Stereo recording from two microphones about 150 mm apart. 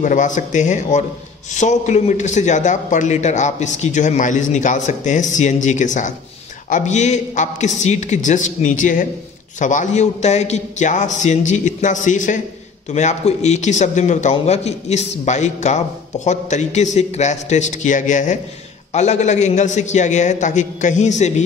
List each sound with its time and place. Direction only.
0.0 s a man's voice: 55° left (ahead or behind)